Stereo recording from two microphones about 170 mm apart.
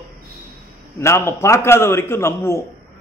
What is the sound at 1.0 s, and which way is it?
A man's voice, 15° left (ahead or behind).